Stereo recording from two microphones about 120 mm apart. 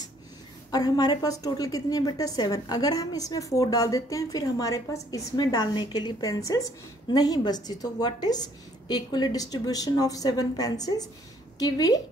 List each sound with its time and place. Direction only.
0.7 s a woman's voice: 30° left (ahead or behind)